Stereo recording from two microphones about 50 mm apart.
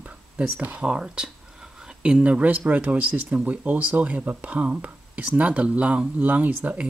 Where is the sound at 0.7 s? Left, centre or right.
Centre.